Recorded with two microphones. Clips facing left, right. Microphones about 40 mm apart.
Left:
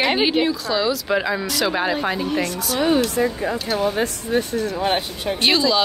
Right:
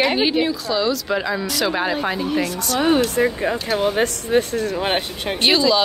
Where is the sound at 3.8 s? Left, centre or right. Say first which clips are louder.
Right 2 dB; right.